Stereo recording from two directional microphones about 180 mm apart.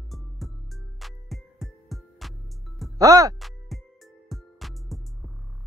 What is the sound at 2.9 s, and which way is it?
Speech, 20° right (ahead or behind).